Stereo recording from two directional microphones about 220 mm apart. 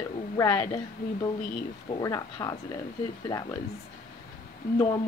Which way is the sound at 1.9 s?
15° left (ahead or behind).